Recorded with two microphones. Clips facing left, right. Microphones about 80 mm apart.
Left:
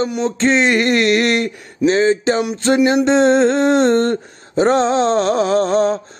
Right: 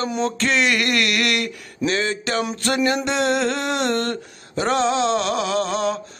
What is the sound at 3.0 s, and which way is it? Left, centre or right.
Mantra, left.